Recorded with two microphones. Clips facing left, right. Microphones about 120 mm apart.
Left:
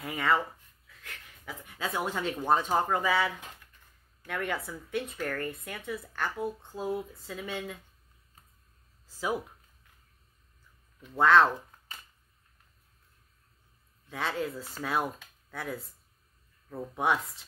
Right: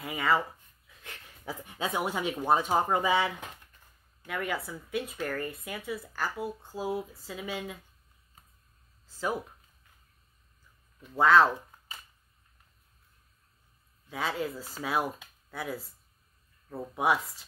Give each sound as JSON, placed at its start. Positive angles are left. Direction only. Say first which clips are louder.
{"t": 0.0, "sound": "speech", "louder": "even", "side_deg": 0}
{"t": 0.8, "sound": "a sound", "louder": "right 1 dB", "side_deg": -25}
{"t": 2.0, "sound": "speech", "louder": "even", "side_deg": -10}
{"t": 4.3, "sound": "speech", "louder": "even", "side_deg": 0}
{"t": 9.0, "sound": "a sound", "louder": "even", "side_deg": 10}
{"t": 11.0, "sound": "speech", "louder": "even", "side_deg": 0}
{"t": 14.0, "sound": "speech", "louder": "even", "side_deg": -5}